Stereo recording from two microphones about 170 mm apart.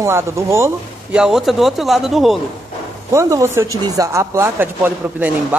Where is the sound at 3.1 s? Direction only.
15° right (ahead or behind).